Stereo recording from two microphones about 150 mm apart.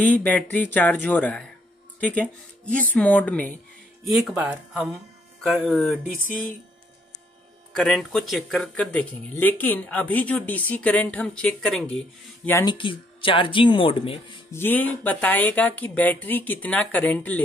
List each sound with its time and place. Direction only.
0.0 s speech: 10° left (ahead or behind)
4.1 s speech: centre (ahead or behind)
5.6 s speech: 10° left (ahead or behind)
7.7 s speech: 5° left (ahead or behind)
12.6 s speech: 35° left (ahead or behind)
14.5 s speech: 15° left (ahead or behind)